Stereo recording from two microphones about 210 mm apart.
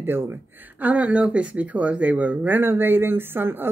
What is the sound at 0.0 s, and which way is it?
Speech, 10° right (ahead or behind).